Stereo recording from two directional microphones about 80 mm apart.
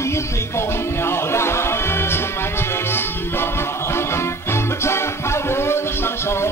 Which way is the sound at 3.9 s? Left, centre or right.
Left.